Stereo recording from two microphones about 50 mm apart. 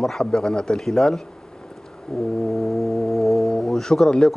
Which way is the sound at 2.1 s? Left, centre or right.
Centre.